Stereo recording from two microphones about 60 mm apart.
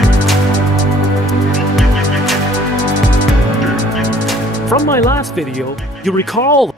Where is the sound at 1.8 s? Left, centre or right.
Centre.